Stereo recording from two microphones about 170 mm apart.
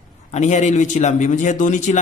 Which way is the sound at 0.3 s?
45° left (ahead or behind).